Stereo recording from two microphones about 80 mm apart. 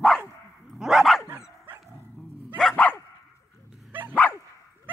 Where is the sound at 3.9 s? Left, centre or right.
Right.